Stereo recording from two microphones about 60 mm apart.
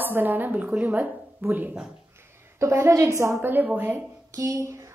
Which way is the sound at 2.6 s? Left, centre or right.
Right.